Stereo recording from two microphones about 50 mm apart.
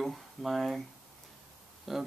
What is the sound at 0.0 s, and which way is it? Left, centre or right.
Speech, centre.